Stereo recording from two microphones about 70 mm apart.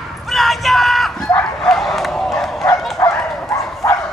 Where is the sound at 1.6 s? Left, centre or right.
Centre.